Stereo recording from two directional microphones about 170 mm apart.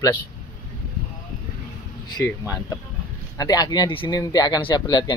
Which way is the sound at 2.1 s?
20° left (ahead or behind).